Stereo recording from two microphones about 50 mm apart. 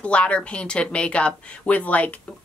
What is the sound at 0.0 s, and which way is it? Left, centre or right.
Speech, left.